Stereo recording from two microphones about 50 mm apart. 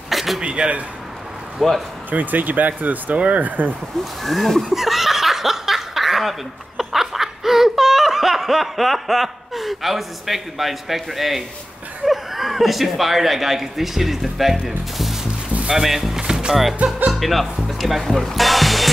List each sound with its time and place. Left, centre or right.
0.1 s a sound: centre
0.4 s speech: right
1.6 s speech: centre
2.0 s speech: right
4.0 s speech: centre
4.6 s snicker: centre
6.8 s laughter: centre
12.1 s speech: centre
15.7 s speech: centre
16.2 s music: centre
16.7 s speech: right
17.1 s speech: centre